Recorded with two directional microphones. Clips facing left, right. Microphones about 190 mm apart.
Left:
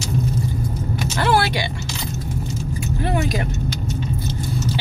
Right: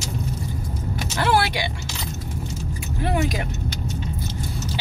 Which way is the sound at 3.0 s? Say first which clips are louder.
Even; 10° right (ahead or behind).